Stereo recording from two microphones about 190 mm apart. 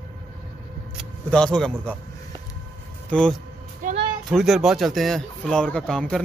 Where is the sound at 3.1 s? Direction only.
5° left (ahead or behind).